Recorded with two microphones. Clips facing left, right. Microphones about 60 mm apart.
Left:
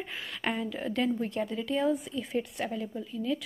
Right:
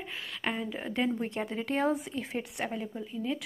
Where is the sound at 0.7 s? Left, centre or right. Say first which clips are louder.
Left 1 dB; centre.